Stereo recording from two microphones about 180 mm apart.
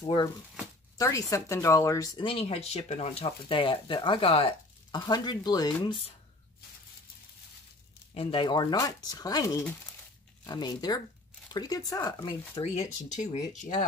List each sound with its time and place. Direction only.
0.0 s speech: 25° left (ahead or behind)
8.1 s speech: 30° left (ahead or behind)